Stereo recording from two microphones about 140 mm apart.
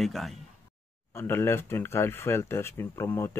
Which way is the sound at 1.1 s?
15° left (ahead or behind).